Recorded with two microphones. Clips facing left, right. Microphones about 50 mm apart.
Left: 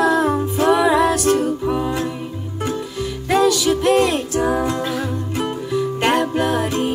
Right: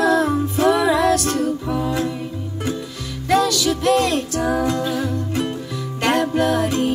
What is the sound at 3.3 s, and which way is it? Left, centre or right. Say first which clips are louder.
Music: left 2 dB; centre.